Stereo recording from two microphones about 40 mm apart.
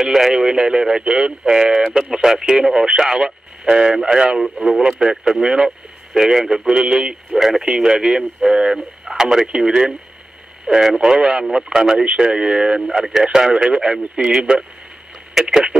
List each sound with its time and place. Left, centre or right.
0.0 s speech: centre
4.4 s speech: centre
7.3 s speech: centre
7.6 s speech: centre
11.0 s speech: right
12.9 s speech: centre
13.2 s speech: centre